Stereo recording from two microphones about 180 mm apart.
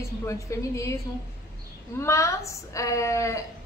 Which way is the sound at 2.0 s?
15° left (ahead or behind).